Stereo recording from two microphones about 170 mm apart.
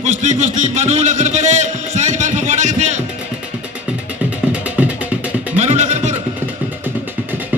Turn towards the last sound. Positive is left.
turn(degrees=-10)  # may be behind; listen again after turning